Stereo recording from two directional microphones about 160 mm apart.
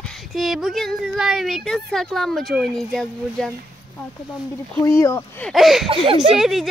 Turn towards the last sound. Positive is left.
turn(degrees=0)  # may be behind; listen again after turning